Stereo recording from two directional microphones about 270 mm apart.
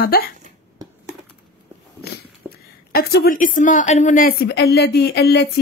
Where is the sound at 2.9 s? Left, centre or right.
Left.